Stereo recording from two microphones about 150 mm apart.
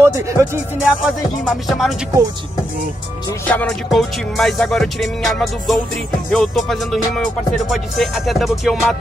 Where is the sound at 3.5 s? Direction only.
5° left (ahead or behind).